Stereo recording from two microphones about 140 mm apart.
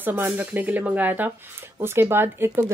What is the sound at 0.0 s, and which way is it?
Speech, 15° right (ahead or behind).